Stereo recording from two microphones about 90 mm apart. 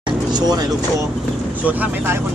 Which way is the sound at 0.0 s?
50° right (ahead or behind).